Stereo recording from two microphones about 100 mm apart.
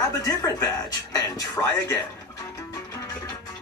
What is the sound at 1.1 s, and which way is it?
Speech, 40° left (ahead or behind).